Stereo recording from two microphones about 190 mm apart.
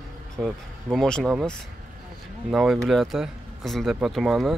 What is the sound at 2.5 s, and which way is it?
Speech, 5° right (ahead or behind).